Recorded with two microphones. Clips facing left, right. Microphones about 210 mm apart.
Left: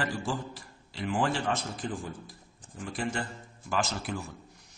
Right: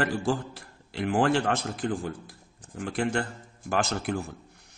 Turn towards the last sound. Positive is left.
turn(degrees=-55)  # may be behind; listen again after turning